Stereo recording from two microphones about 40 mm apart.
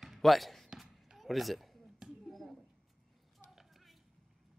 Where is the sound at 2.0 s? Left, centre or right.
Centre.